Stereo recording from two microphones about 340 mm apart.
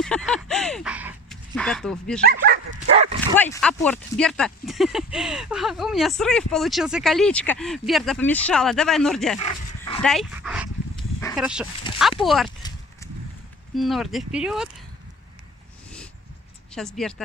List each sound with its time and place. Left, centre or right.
0.0 s speech: centre
2.2 s speech: right
3.5 s speech: centre
9.4 s dog: centre
10.0 s speech: centre
11.1 s a sound: centre
12.0 s speech: centre
12.4 s clip-clop: centre
13.7 s speech: centre
16.7 s speech: centre